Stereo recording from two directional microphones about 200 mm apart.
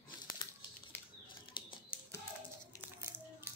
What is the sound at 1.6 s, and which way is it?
Typewriter, 25° left (ahead or behind).